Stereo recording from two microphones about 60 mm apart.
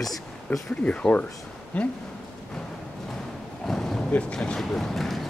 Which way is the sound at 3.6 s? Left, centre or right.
Centre.